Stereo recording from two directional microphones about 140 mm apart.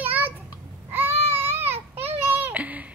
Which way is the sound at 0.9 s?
15° right (ahead or behind).